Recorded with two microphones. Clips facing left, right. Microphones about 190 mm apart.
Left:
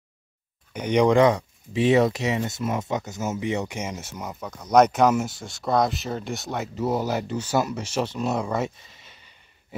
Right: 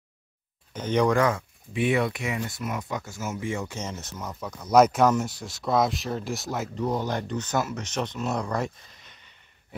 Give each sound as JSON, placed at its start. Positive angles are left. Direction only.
{"t": 0.7, "sound": "speech", "side_deg": 15}
{"t": 4.4, "sound": "speech", "side_deg": 0}